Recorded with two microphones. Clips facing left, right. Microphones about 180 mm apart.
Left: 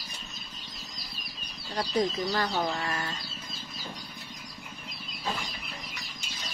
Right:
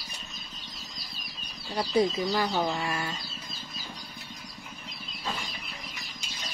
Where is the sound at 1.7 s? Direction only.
10° right (ahead or behind).